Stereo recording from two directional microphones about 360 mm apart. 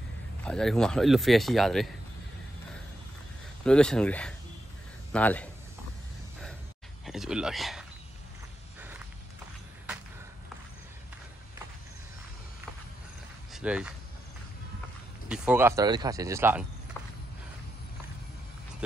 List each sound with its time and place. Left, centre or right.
0.4 s a man's voice: centre
3.6 s a man's voice: centre
7.1 s a man's voice: centre
13.5 s speech: centre
15.2 s speech: centre